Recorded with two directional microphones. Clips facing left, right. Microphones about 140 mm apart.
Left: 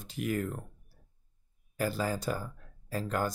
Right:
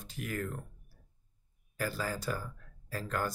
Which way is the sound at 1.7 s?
20° left (ahead or behind).